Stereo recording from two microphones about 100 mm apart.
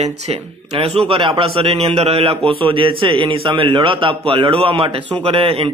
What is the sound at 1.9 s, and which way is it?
A man's voice, 80° right.